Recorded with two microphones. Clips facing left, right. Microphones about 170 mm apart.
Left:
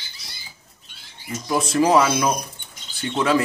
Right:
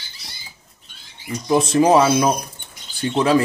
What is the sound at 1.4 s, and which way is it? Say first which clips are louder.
Speech: right 4 dB; 25° right (ahead or behind).